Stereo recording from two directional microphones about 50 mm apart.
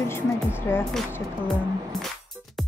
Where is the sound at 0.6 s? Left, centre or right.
Left.